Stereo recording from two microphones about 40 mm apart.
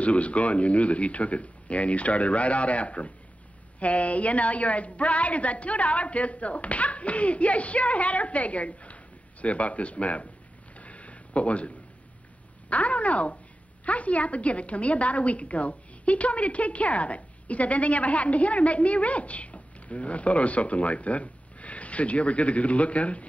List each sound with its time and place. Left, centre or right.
0.0 s a woman's voice: left
10.8 s a sound: left
12.6 s a woman's voice: left